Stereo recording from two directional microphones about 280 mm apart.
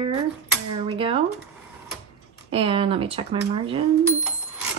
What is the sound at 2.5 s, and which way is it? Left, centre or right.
Speech, centre.